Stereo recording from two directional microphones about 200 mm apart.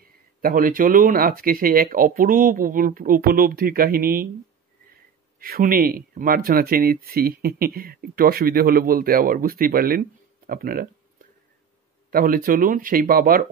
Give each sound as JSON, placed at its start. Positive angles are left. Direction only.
{"t": 0.4, "sound": "speech", "side_deg": -45}
{"t": 5.4, "sound": "speech", "side_deg": -45}